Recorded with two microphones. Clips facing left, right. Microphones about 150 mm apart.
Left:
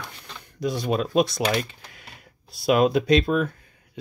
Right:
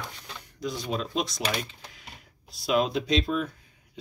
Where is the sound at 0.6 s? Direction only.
60° left (ahead or behind).